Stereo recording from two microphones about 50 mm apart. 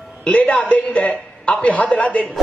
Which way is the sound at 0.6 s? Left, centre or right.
Left.